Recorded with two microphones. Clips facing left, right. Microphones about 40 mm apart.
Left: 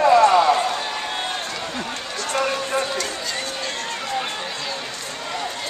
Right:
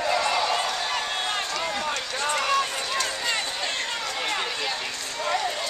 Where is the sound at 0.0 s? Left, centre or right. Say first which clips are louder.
Left 10 dB; left.